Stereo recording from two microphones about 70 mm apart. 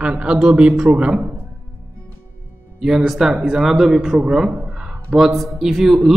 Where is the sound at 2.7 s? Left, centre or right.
Centre.